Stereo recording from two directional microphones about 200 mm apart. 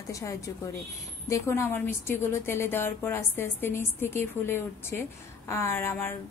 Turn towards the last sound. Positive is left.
turn(degrees=10)  # may be behind; listen again after turning